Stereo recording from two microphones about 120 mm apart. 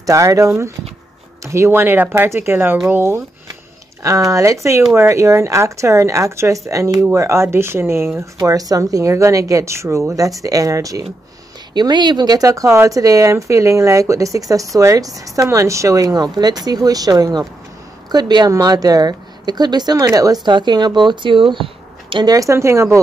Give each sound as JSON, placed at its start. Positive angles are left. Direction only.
{"t": 0.0, "sound": "a woman's voice", "side_deg": -30}
{"t": 22.1, "sound": "speech", "side_deg": -35}